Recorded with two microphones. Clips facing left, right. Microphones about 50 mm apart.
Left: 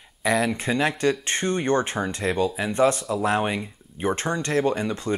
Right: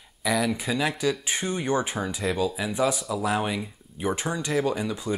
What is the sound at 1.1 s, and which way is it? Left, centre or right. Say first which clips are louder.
Speech: left 4 dB; centre.